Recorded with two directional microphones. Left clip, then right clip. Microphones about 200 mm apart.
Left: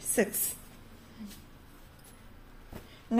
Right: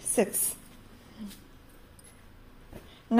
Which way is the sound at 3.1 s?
25° right (ahead or behind).